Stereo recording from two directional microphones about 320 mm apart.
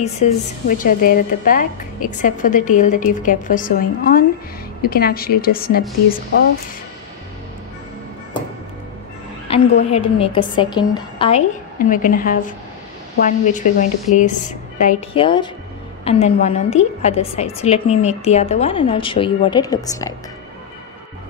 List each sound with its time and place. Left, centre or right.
0.0 s a woman's voice: left
9.5 s a sound: centre
9.9 s a woman's voice: centre